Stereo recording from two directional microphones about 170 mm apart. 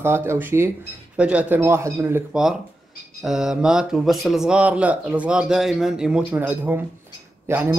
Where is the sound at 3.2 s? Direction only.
Centre (ahead or behind).